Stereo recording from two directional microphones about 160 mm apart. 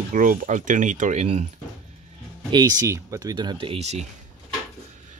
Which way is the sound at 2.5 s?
25° right (ahead or behind).